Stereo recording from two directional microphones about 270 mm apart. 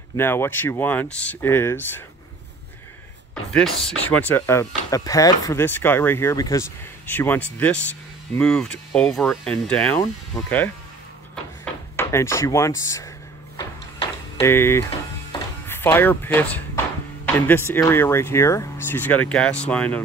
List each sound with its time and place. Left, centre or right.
0.2 s speech: centre
3.5 s speech: centre
13.6 s a sound: centre
14.5 s speech: centre
15.3 s a sound: centre
17.5 s speech: centre